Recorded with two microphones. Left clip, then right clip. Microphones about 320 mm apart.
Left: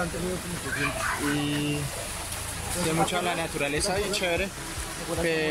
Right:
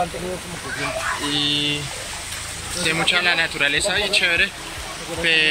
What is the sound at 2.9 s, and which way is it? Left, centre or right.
A man's voice, centre.